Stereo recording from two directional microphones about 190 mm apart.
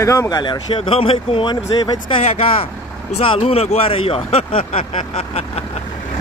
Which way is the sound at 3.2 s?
30° left (ahead or behind).